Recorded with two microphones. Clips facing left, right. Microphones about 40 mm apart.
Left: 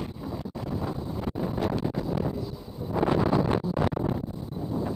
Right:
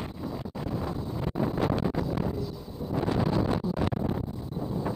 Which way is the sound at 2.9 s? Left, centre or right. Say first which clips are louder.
Left 4 dB; left.